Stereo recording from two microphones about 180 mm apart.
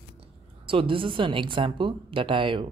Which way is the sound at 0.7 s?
30° right (ahead or behind).